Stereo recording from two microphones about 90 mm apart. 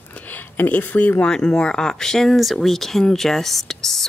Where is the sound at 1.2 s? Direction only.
10° left (ahead or behind).